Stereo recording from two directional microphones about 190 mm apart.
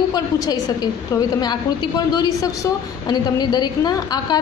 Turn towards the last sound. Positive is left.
turn(degrees=20)  # may be behind; listen again after turning